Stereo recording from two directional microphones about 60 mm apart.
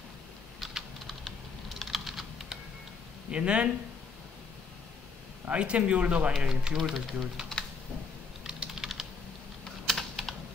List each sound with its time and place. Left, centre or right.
0.6 s typing: centre
3.3 s speech: centre
5.5 s speech: centre
6.8 s speech: centre
8.5 s typing: centre
9.8 s typing: centre